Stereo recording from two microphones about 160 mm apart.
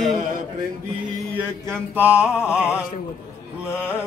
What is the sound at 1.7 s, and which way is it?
Music, 10° right (ahead or behind).